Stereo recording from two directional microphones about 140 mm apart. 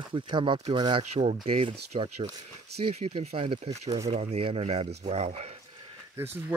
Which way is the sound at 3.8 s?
25° right (ahead or behind).